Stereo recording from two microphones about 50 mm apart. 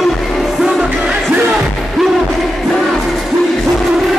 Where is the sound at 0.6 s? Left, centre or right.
Centre.